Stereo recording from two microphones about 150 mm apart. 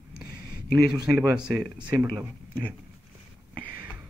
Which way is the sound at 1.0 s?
5° right (ahead or behind).